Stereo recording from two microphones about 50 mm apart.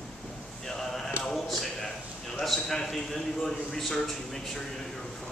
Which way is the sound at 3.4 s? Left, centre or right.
Centre.